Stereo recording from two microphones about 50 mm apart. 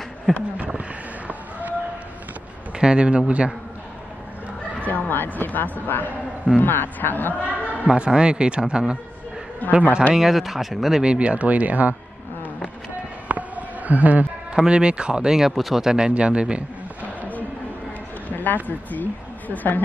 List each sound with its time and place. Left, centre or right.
0.3 s speech: centre
0.7 s a sound: right
2.8 s speech: centre
4.8 s a woman's voice: left
7.9 s speech: centre
9.6 s a woman's voice: left
10.1 s speech: centre
11.0 s speech: right
13.3 s a sound: right
14.5 s speech: centre
15.3 s speech: centre; by 16.6 s right
18.3 s speech: left